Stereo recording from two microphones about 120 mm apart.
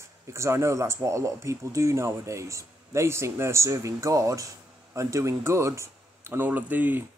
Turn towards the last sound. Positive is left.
turn(degrees=-15)  # may be behind; listen again after turning